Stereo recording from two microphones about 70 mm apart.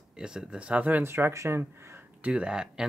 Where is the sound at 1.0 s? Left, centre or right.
Right.